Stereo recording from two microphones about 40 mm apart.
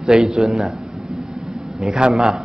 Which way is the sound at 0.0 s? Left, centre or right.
Centre.